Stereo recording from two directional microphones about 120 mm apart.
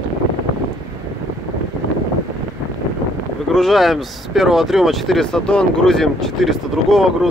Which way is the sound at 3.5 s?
Centre (ahead or behind).